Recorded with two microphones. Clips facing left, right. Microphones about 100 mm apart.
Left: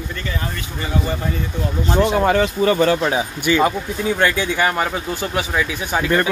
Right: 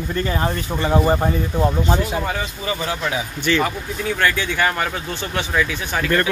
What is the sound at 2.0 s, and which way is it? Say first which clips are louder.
Speech: left 8 dB; 75° left (ahead or behind).